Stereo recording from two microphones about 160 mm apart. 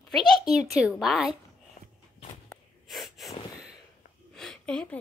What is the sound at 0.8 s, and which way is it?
Speech, 5° right (ahead or behind).